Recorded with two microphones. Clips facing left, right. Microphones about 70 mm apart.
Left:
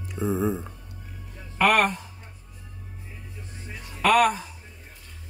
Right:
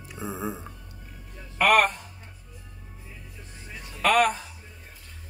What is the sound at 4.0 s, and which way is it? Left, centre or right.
Speech, centre.